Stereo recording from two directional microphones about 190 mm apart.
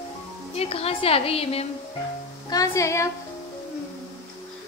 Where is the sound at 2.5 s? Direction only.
15° left (ahead or behind).